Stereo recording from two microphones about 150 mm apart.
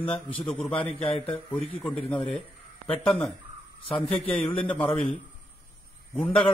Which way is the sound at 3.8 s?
40° left (ahead or behind).